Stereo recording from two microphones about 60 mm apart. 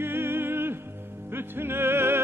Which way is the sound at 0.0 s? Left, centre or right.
Right.